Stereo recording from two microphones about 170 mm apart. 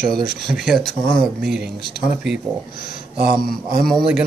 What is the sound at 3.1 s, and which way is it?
Speech, 60° right (ahead or behind).